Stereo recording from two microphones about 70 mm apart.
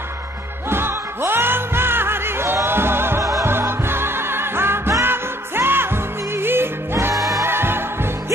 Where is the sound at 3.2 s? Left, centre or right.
Right.